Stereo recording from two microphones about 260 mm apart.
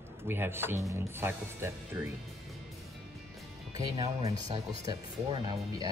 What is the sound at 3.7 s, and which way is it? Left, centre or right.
Speech, centre.